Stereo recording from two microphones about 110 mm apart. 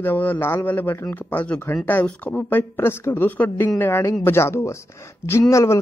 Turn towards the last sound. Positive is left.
turn(degrees=30)  # may be behind; listen again after turning